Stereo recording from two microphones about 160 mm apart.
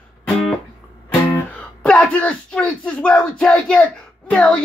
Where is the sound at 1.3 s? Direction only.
5° left (ahead or behind).